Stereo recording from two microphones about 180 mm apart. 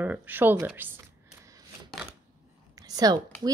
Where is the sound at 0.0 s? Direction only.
10° right (ahead or behind).